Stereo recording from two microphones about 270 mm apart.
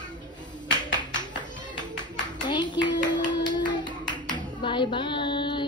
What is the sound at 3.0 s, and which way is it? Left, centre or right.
Clapping, centre.